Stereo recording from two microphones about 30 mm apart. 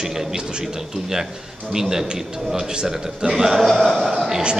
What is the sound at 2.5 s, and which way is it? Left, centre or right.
Speech, right.